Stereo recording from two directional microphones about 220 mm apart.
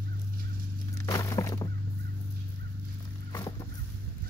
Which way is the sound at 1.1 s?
15° left (ahead or behind).